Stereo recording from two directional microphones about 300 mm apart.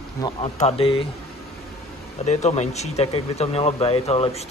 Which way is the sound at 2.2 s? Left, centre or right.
Left.